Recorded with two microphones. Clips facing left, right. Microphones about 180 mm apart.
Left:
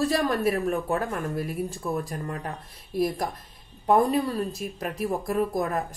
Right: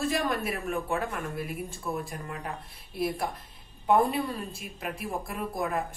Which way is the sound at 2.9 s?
40° left (ahead or behind).